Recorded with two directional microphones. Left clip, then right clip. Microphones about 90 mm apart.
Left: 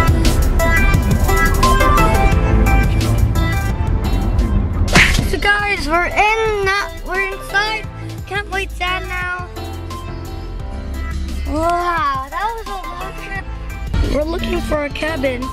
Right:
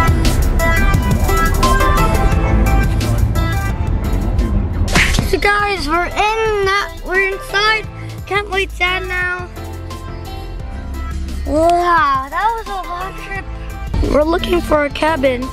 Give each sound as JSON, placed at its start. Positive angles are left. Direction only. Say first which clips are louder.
{"t": 0.0, "sound": "music", "louder": "right 1 dB", "side_deg": 0}
{"t": 5.2, "sound": "music", "louder": "right 2 dB", "side_deg": -20}
{"t": 8.3, "sound": "cat", "louder": "right 4 dB", "side_deg": -30}
{"t": 11.7, "sound": "a sound", "louder": "right 3 dB", "side_deg": -30}
{"t": 12.7, "sound": "music", "louder": "right 3 dB", "side_deg": -30}
{"t": 14.5, "sound": "speech", "louder": "right 5 dB", "side_deg": -40}